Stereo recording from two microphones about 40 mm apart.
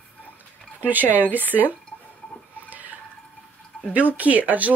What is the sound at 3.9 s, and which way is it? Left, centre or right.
Speech, right.